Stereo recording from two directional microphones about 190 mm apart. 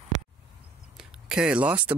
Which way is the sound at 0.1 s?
40° right (ahead or behind).